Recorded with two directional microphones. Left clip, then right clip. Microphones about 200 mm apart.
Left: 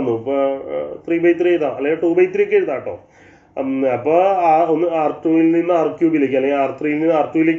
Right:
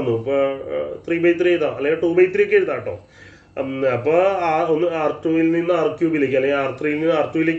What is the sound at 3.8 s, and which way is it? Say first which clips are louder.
Speech: left 2 dB; 15° right (ahead or behind).